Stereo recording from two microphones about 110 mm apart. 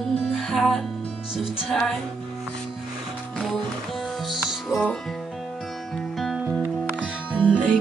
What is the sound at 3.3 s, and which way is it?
Music, centre (ahead or behind).